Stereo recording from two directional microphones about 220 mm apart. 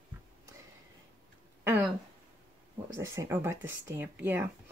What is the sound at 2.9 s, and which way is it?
Speech, 15° right (ahead or behind).